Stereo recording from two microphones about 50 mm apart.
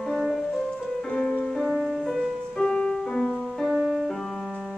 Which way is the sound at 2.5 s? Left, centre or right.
Centre.